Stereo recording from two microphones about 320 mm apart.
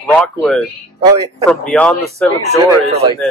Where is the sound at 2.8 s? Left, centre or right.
Centre.